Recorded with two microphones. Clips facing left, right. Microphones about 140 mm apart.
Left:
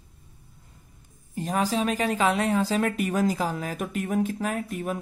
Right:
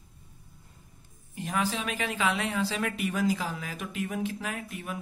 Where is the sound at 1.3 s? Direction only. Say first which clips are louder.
Left 5 dB; 35° left (ahead or behind).